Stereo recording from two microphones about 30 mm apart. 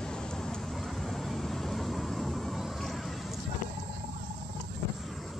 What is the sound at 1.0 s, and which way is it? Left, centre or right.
Vehicle, centre.